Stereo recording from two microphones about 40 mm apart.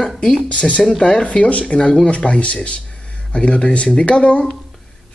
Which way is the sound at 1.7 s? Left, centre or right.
Left.